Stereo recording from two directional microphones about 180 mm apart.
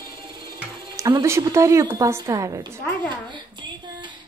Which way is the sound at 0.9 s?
20° right (ahead or behind).